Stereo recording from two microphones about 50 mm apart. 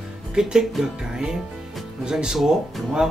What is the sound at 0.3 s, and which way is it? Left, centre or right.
Speech, centre.